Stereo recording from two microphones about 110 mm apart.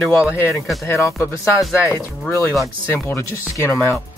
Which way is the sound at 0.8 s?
25° left (ahead or behind).